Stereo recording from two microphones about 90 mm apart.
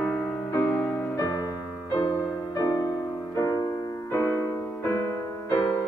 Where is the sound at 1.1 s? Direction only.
40° left (ahead or behind).